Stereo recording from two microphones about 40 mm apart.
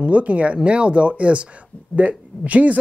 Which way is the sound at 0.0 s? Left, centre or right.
Right.